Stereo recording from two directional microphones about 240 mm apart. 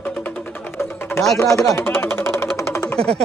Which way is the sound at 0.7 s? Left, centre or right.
Centre.